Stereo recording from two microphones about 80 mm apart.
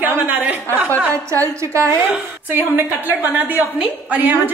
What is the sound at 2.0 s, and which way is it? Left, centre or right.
A woman's voice, right.